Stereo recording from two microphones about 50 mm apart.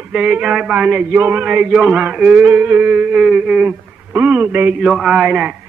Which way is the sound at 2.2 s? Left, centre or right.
Right.